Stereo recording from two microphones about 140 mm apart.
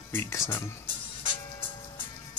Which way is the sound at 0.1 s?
15° left (ahead or behind).